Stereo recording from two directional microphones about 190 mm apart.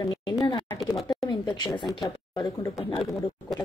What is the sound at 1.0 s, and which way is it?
Speech, 20° left (ahead or behind).